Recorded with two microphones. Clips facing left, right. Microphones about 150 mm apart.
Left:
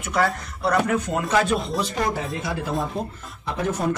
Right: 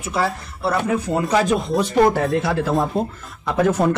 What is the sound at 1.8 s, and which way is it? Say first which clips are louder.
Speech: right 9 dB; 60° right (ahead or behind).